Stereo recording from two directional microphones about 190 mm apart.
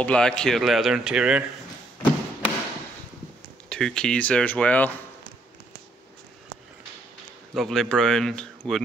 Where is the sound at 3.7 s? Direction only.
5° left (ahead or behind).